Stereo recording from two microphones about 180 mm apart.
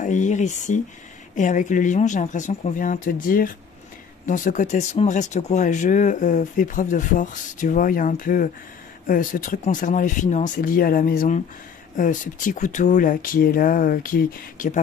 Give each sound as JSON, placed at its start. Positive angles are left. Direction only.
{"t": 0.0, "sound": "speech", "side_deg": 45}